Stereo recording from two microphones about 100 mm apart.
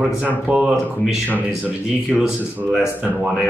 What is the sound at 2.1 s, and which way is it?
Speech, 5° right (ahead or behind).